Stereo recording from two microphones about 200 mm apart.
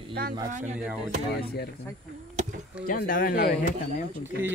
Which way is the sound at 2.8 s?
45° left (ahead or behind).